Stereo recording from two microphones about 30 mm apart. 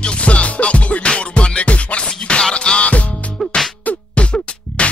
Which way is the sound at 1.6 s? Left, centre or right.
Left.